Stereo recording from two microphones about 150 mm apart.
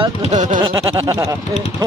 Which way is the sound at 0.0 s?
50° right (ahead or behind).